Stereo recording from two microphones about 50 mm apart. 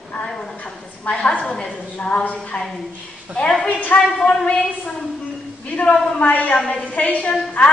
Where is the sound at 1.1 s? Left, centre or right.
Left.